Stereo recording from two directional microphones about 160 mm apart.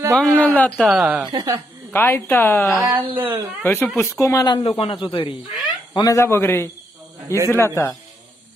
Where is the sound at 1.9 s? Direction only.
15° left (ahead or behind).